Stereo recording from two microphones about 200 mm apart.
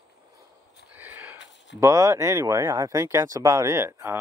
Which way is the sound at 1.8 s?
15° right (ahead or behind).